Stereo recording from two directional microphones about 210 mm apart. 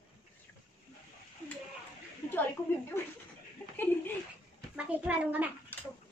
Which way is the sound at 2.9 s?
10° left (ahead or behind).